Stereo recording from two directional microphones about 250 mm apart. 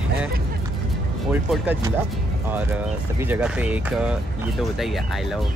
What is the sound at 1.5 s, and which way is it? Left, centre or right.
Speech, centre.